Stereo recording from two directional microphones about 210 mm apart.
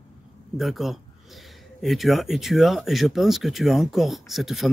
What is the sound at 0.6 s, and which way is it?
Speech, centre (ahead or behind).